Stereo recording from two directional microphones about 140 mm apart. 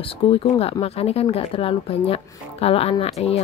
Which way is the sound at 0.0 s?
40° left (ahead or behind).